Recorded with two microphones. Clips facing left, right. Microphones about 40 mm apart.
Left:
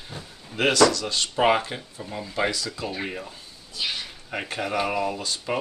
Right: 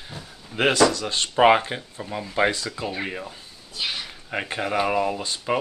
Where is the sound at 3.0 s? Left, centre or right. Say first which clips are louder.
Right 2 dB; centre.